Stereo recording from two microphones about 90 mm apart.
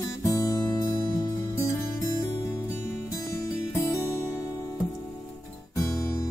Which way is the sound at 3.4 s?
30° left (ahead or behind).